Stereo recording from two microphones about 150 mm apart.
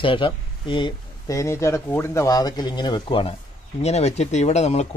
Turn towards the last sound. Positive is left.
turn(degrees=45)  # may be behind; listen again after turning